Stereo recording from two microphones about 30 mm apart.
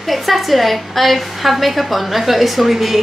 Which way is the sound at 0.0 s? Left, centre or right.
Centre.